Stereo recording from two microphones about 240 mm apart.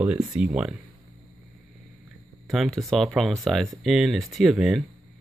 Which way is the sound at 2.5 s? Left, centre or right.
Centre.